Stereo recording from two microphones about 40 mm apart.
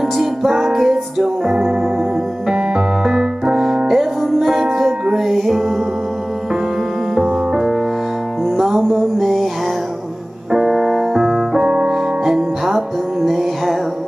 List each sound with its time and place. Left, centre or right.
0.5 s music: centre
2.7 s music: centre
7.2 s music: centre
8.5 s music: centre
10.5 s piano: centre
13.2 s music: centre